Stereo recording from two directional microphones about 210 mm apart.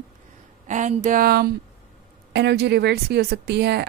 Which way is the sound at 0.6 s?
35° right (ahead or behind).